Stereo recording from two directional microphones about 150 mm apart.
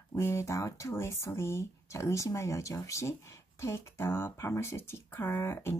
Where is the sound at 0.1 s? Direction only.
15° left (ahead or behind).